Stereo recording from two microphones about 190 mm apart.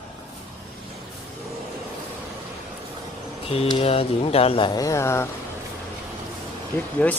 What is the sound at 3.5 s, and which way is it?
Speech, 30° left (ahead or behind).